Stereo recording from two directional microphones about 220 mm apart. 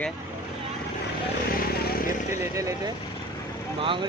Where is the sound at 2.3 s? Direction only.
15° right (ahead or behind).